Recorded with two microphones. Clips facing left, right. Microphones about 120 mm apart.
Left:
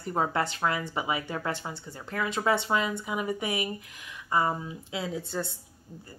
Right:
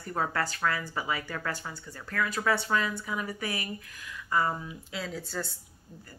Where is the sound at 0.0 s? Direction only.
20° left (ahead or behind).